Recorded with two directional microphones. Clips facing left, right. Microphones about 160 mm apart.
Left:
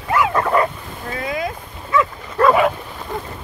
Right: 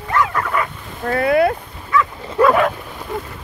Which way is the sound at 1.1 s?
65° right (ahead or behind).